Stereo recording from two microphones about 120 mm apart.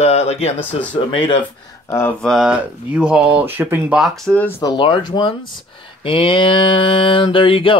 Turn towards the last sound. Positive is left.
turn(degrees=45)  # may be behind; listen again after turning